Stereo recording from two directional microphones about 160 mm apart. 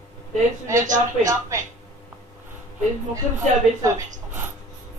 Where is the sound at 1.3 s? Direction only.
20° right (ahead or behind).